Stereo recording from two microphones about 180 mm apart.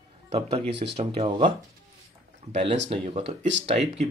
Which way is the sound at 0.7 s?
70° right (ahead or behind).